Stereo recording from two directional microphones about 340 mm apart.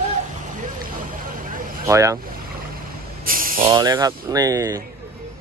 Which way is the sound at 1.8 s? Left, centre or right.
Centre.